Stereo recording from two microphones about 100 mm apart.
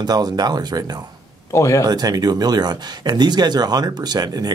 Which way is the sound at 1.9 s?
40° right (ahead or behind).